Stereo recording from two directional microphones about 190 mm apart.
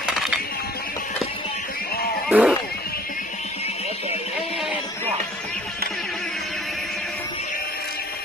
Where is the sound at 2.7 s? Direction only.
55° left (ahead or behind).